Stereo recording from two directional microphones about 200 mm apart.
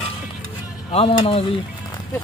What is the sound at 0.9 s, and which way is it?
Speech, 30° left (ahead or behind).